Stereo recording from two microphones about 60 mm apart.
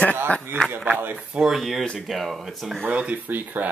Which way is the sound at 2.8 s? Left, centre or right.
Right.